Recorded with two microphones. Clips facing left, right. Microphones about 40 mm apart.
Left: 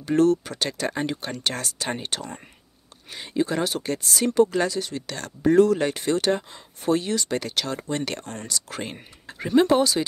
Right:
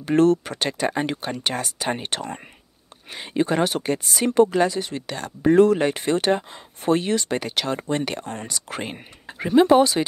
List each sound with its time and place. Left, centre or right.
0.0 s speech: right; by 2.0 s centre
2.0 s speech: right
3.8 s speech: right
8.8 s speech: centre
9.8 s speech: right